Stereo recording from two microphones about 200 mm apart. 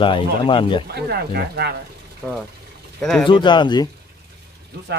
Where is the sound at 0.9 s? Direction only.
50° right (ahead or behind).